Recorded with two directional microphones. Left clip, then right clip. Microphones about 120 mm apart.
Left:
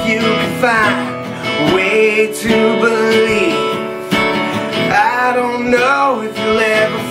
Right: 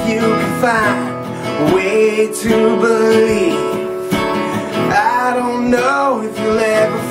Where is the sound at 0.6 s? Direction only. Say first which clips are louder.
Left 2 dB; centre (ahead or behind).